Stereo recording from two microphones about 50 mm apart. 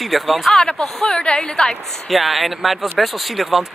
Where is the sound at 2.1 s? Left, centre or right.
Centre.